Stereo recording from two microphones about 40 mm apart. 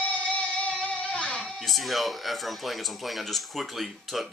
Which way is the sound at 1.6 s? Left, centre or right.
Centre.